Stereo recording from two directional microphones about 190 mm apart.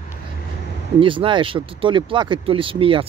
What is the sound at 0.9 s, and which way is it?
Speech, 25° right (ahead or behind).